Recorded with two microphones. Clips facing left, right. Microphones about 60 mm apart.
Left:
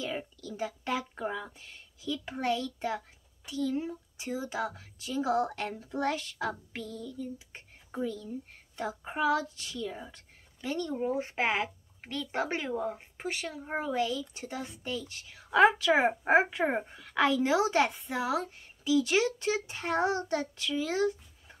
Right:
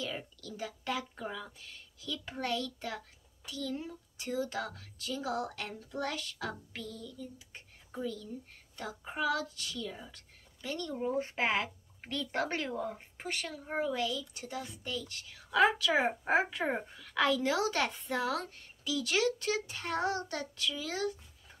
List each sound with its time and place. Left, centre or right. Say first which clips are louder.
0.0 s a sound: left 4 dB; left
2.4 s speech: left 5 dB; left
5.3 s child singing: left 7 dB; left
8.7 s speech: left 5 dB; left
11.2 s speech: left 2 dB; centre
17.9 s a woman's voice: left 2 dB; centre
18.9 s speech: left 5 dB; left